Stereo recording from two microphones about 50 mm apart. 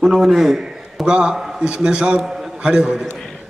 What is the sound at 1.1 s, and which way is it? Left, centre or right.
A man's voice, centre.